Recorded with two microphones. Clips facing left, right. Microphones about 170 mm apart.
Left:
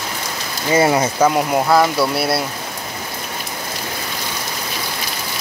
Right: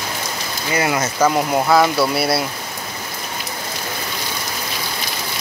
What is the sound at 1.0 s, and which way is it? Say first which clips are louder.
Speech: left 1 dB; 5° left (ahead or behind).